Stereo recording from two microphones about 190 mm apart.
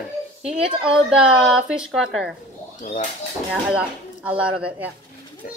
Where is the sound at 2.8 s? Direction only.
40° left (ahead or behind).